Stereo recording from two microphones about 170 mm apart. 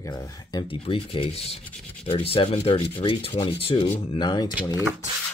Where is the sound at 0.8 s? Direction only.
30° left (ahead or behind).